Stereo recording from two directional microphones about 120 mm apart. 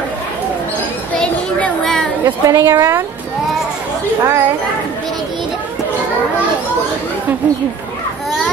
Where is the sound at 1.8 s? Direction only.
5° left (ahead or behind).